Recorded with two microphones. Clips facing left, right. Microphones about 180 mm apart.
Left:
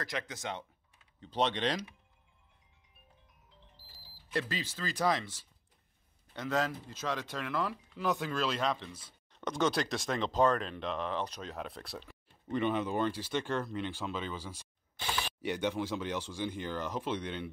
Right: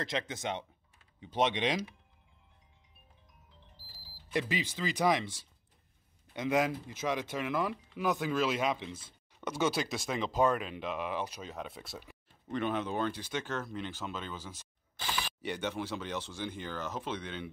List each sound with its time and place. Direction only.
0.0 s speech: 25° right (ahead or behind)
4.3 s speech: 15° right (ahead or behind)
6.3 s speech: 15° right (ahead or behind)
8.1 s speech: 5° right (ahead or behind)
9.3 s speech: 5° right (ahead or behind)
15.4 s speech: 10° left (ahead or behind)